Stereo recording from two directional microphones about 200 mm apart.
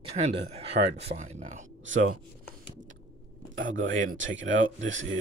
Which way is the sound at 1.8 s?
70° right (ahead or behind).